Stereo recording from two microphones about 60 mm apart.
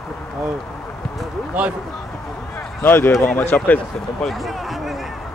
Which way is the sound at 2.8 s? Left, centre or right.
Left.